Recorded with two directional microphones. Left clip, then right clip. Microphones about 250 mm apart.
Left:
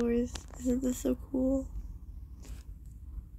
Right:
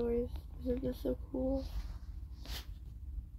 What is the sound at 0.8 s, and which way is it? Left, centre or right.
Speech, centre.